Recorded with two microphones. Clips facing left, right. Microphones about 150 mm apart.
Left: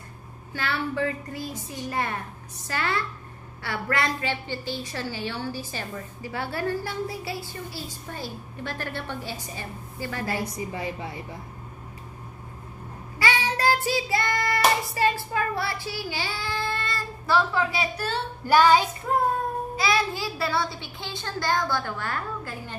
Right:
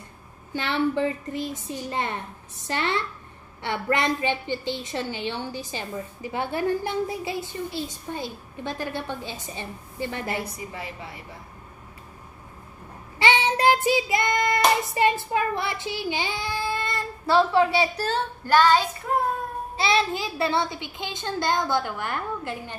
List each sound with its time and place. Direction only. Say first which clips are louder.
0.5 s a woman's voice: right 5 dB; 20° right (ahead or behind)
10.7 s a woman's voice: left 5 dB; 25° left (ahead or behind)
13.2 s child singing: right 4 dB; 20° right (ahead or behind)
17.3 s a woman's voice: right 4 dB; 30° right (ahead or behind)
18.4 s child singing: left 1 dB; 10° left (ahead or behind)
19.1 s child singing: left 1 dB; 5° right (ahead or behind)
19.8 s a woman's voice: right 3 dB; 25° right (ahead or behind)